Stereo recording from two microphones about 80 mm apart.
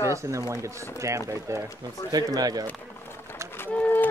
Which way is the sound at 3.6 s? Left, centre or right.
Left.